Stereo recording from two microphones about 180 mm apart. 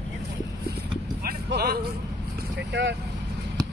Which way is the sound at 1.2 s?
60° right (ahead or behind).